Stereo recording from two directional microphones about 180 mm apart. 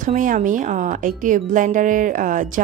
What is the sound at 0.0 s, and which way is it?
Speech, 45° right (ahead or behind).